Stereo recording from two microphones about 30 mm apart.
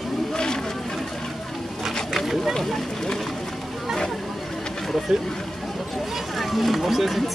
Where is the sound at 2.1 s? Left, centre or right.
Centre.